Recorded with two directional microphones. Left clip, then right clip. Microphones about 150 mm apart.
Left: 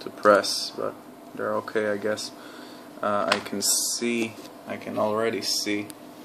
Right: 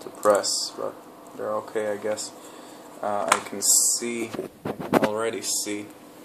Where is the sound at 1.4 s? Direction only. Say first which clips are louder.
Left 1 dB; 25° left (ahead or behind).